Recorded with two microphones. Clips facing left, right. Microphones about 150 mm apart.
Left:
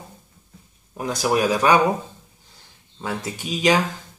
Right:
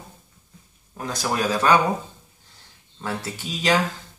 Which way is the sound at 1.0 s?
15° left (ahead or behind).